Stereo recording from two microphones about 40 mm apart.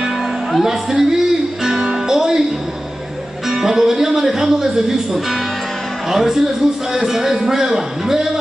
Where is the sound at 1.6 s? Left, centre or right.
Centre.